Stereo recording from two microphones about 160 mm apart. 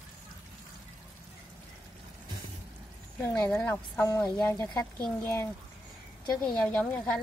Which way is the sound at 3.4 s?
15° left (ahead or behind).